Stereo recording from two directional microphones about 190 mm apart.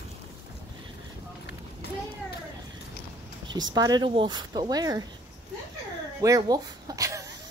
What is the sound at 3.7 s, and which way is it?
Speech, 20° right (ahead or behind).